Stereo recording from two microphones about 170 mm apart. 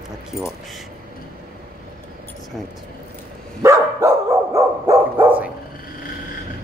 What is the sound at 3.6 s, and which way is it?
Dog, 20° right (ahead or behind).